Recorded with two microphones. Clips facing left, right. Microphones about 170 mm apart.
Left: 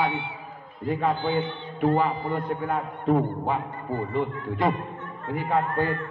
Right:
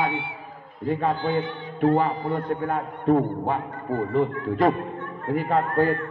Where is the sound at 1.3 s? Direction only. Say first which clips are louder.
Right 1 dB; 35° right (ahead or behind).